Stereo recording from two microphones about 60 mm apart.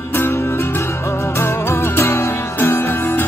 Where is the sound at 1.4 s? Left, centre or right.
Left.